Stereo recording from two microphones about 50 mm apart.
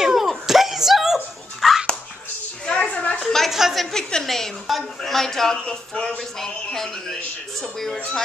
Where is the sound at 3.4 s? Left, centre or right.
Centre.